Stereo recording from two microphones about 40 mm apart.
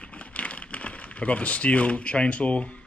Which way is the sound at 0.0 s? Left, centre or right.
Left.